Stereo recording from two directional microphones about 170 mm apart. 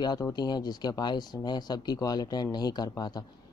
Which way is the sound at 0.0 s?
25° left (ahead or behind).